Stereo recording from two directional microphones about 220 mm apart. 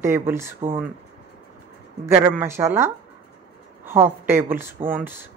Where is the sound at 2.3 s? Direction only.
10° right (ahead or behind).